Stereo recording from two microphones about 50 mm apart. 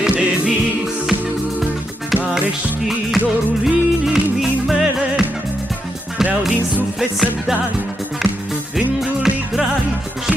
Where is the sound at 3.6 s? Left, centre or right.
Centre.